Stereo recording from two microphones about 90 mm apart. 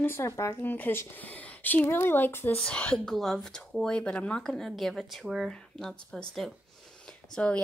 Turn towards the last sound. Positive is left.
turn(degrees=10)  # may be behind; listen again after turning